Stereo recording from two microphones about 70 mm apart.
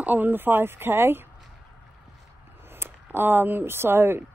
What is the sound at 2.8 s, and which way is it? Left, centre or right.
Speech, right.